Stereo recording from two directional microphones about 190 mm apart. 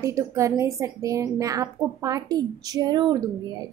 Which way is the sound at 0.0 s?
15° right (ahead or behind).